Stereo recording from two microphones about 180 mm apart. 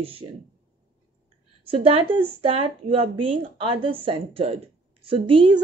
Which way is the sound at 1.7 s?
30° right (ahead or behind).